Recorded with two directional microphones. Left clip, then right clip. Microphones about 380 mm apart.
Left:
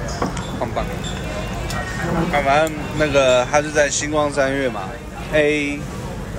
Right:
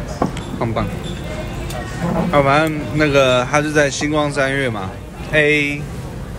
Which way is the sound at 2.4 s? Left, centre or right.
Centre.